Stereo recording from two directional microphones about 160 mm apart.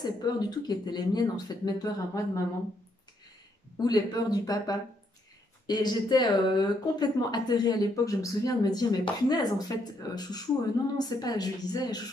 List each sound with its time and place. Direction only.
0.0 s speech: 25° left (ahead or behind)
3.7 s speech: 25° left (ahead or behind)